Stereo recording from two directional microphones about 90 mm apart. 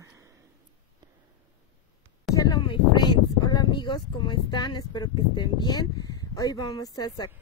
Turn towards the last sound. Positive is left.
turn(degrees=45)  # may be behind; listen again after turning